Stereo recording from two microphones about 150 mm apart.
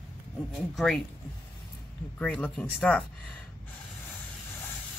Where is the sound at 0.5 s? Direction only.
Centre (ahead or behind).